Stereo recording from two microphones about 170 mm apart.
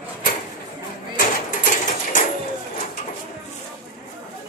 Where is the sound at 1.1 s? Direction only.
60° left (ahead or behind).